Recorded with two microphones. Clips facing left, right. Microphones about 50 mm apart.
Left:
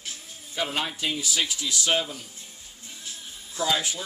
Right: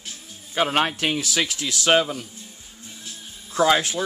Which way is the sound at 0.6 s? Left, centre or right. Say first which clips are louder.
Right 7 dB; right.